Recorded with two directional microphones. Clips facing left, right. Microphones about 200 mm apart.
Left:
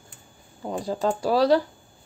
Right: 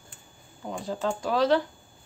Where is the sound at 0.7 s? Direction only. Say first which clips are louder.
Left 4 dB; 35° left (ahead or behind).